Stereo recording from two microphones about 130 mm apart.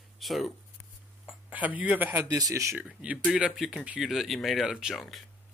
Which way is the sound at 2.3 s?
25° right (ahead or behind).